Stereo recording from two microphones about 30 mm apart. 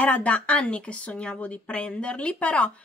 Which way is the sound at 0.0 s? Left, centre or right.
Left.